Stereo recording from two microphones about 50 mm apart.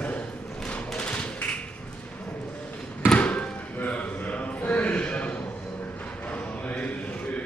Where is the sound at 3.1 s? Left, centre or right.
Left.